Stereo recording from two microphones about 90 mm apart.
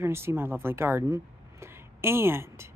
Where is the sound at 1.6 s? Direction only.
30° right (ahead or behind).